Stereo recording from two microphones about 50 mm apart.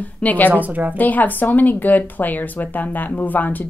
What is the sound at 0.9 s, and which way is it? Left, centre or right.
Speech, left.